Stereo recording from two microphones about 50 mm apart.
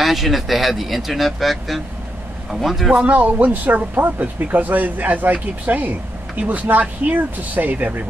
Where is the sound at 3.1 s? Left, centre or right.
Right.